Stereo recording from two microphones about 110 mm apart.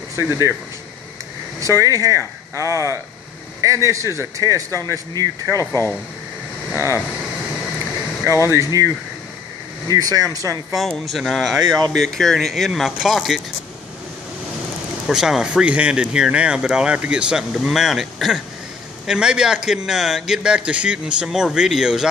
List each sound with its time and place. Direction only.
0.1 s speech: 25° right (ahead or behind)
1.6 s speech: 30° right (ahead or behind)
8.3 s speech: 25° right (ahead or behind)
10.8 s speech: centre (ahead or behind)
15.0 s speech: 5° right (ahead or behind)